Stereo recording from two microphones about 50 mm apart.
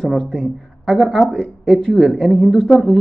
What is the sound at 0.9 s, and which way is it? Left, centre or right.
Speech, centre.